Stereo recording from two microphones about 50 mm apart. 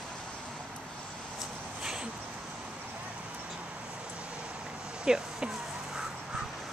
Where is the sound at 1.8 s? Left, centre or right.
Centre.